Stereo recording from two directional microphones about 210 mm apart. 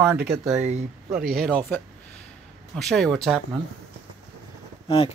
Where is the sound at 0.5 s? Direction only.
30° right (ahead or behind).